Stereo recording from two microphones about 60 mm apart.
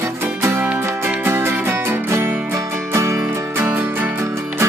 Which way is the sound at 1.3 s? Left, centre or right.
Right.